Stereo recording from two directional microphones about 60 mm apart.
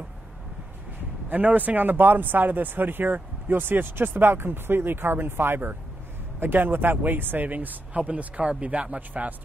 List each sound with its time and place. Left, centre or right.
1.3 s speech: right